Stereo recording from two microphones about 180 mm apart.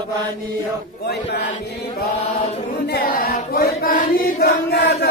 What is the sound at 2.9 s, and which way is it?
Chant, 55° left (ahead or behind).